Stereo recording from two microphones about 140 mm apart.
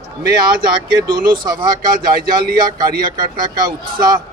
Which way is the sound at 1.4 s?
30° right (ahead or behind).